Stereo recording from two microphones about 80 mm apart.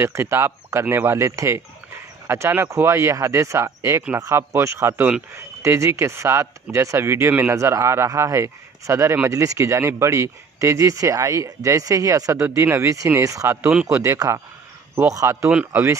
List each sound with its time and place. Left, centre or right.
0.0 s speech: right